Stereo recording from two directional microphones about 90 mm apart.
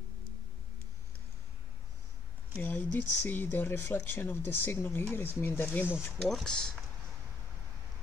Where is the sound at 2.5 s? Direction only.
20° left (ahead or behind).